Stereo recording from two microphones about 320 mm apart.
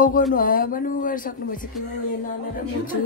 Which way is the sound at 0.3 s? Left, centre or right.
Left.